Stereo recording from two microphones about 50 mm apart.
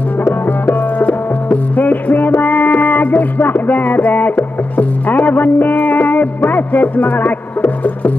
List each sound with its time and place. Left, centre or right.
0.5 s music: left